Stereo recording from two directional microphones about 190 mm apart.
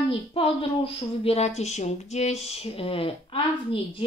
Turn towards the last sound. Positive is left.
turn(degrees=30)  # may be behind; listen again after turning